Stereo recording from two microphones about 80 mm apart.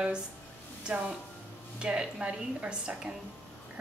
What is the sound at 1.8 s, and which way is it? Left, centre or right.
A woman's voice, centre.